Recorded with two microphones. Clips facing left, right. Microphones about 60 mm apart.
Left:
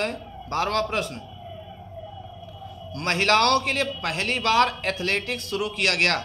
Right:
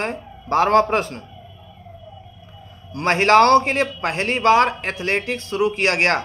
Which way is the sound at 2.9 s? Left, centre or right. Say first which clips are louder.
Right 7 dB; right.